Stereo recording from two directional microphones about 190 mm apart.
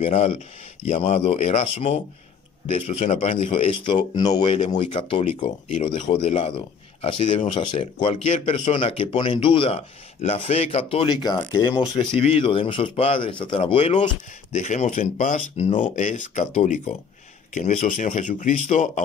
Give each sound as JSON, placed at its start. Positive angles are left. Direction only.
{"t": 0.0, "sound": "speech", "side_deg": 30}
{"t": 14.5, "sound": "speech", "side_deg": 40}